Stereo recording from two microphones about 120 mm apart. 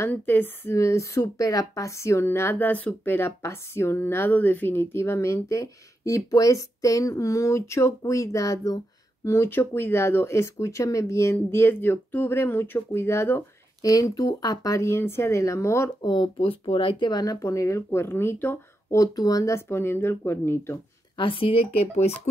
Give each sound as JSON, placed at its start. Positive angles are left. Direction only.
{"t": 0.0, "sound": "speech", "side_deg": 15}
{"t": 16.0, "sound": "speech", "side_deg": 35}
{"t": 16.3, "sound": "speech", "side_deg": 55}
{"t": 18.9, "sound": "speech", "side_deg": 30}
{"t": 21.2, "sound": "speech", "side_deg": 50}